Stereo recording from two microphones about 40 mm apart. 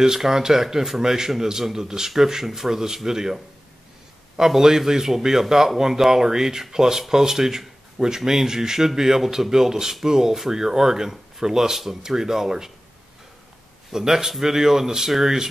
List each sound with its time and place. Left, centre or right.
0.0 s speech: centre
4.4 s speech: centre
13.9 s speech: centre